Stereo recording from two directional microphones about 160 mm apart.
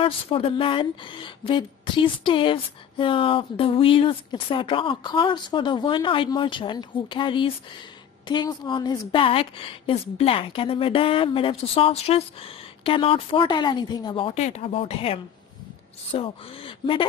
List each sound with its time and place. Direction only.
0.0 s speech: 35° left (ahead or behind)